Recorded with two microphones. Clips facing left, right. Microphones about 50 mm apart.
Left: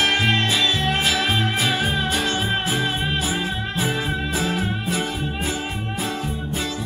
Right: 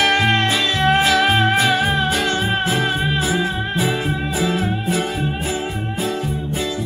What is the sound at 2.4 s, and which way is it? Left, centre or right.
Music, right.